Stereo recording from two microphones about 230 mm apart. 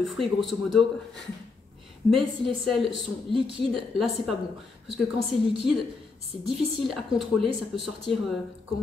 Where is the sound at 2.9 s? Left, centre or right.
Right.